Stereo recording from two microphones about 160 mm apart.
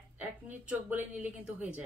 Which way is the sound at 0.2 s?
10° right (ahead or behind).